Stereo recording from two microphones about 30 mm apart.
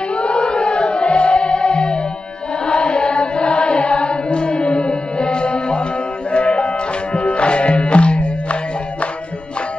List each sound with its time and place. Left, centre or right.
0.1 s chant: left
0.4 s music: left
2.6 s chant: left
3.4 s music: left